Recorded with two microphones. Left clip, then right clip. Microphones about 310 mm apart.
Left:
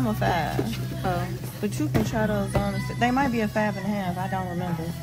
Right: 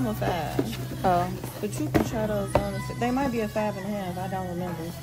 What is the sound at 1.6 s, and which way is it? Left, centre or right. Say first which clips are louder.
Speech: right 1 dB; left.